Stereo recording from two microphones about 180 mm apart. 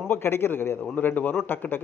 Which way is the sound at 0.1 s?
10° left (ahead or behind).